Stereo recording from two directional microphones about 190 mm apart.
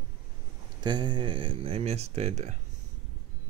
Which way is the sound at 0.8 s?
25° right (ahead or behind).